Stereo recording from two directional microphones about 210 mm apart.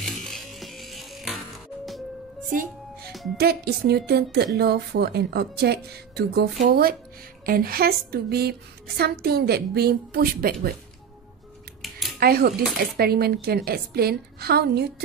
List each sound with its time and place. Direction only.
0.0 s music: centre (ahead or behind)
3.3 s a woman's voice: 50° right (ahead or behind)
12.2 s a woman's voice: 45° right (ahead or behind)